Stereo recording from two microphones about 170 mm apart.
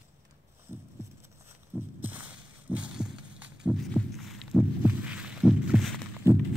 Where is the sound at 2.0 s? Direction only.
10° right (ahead or behind).